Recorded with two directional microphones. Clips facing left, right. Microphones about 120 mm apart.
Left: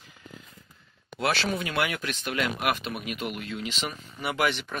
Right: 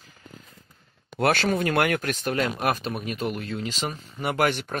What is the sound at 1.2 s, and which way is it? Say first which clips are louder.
Speech: right 5 dB; 50° right (ahead or behind).